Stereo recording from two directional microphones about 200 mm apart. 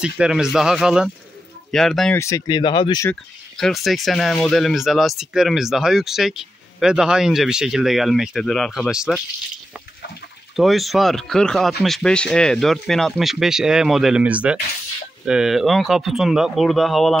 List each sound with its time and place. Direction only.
0.0 s speech: 5° right (ahead or behind)
2.1 s speech: 15° left (ahead or behind)
3.1 s speech: centre (ahead or behind)
10.5 s speech: centre (ahead or behind)